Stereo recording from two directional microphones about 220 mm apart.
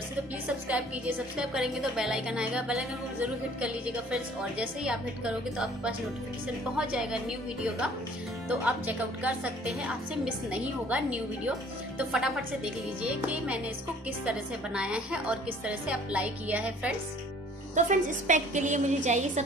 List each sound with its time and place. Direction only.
0.7 s a woman's voice: 5° right (ahead or behind)
17.7 s a woman's voice: 35° right (ahead or behind)